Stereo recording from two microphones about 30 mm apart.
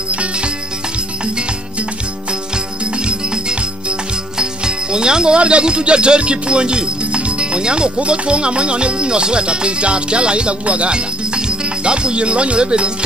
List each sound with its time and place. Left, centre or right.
0.1 s music: right
2.8 s music: right
4.4 s speech: right
8.0 s music: right
10.6 s speech: right